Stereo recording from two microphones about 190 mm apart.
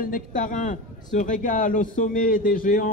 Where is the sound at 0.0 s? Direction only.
45° left (ahead or behind).